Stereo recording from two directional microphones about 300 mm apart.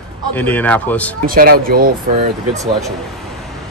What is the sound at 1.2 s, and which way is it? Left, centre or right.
Speech, right.